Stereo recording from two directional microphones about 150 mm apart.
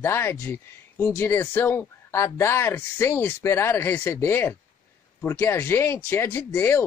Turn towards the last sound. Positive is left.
turn(degrees=15)  # may be behind; listen again after turning